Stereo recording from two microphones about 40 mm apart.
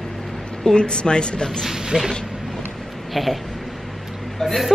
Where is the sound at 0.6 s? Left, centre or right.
Centre.